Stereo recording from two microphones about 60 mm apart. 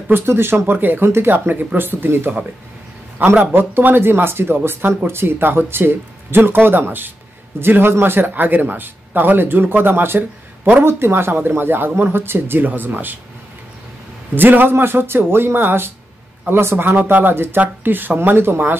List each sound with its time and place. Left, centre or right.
0.1 s a man's voice: right
14.3 s a man's voice: right